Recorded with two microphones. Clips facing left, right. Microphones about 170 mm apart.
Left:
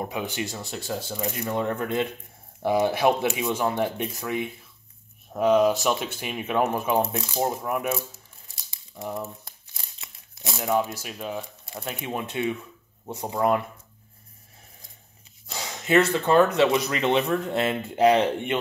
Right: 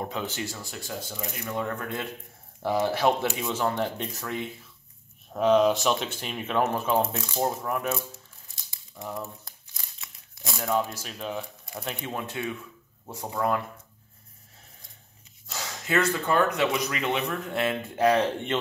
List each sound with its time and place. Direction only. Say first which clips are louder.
0.0 s speech: left 2 dB; 15° left (ahead or behind)
9.9 s tearing: left 1 dB; 20° left (ahead or behind)
10.9 s speech: left 2 dB; 10° left (ahead or behind)
12.1 s speech: left 7 dB; 20° left (ahead or behind)
15.4 s speech: left 4 dB; 15° left (ahead or behind)